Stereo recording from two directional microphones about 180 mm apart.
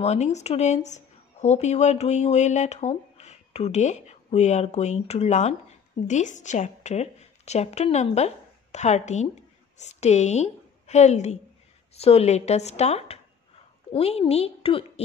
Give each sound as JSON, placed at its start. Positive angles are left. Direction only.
{"t": 0.0, "sound": "a woman's voice", "side_deg": 40}